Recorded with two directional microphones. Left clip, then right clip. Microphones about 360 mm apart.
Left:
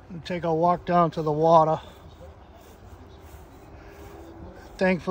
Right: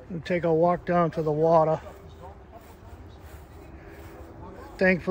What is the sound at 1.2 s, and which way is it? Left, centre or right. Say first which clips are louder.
Speech: left 1 dB; left.